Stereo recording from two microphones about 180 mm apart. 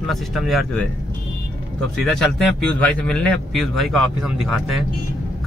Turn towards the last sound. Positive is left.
turn(degrees=0)  # may be behind; listen again after turning